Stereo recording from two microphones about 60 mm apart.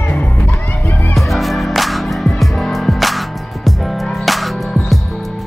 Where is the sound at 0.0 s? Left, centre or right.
Left.